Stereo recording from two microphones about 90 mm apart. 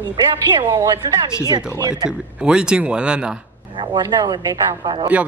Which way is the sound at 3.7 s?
60° right (ahead or behind).